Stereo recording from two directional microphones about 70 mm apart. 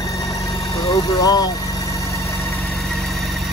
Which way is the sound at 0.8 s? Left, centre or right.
Left.